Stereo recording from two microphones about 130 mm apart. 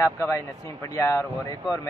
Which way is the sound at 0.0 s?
20° left (ahead or behind).